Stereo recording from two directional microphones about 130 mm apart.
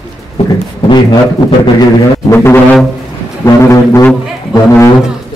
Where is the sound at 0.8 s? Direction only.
35° left (ahead or behind).